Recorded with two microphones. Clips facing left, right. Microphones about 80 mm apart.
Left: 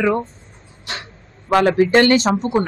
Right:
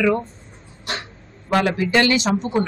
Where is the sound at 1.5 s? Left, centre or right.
Left.